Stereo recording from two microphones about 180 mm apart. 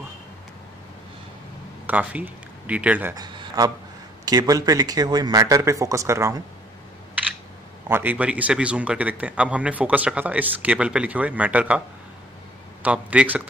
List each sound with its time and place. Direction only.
1.9 s speech: 10° right (ahead or behind)
3.2 s a man's voice: 20° right (ahead or behind)
7.9 s speech: 10° right (ahead or behind)
12.8 s speech: 5° right (ahead or behind)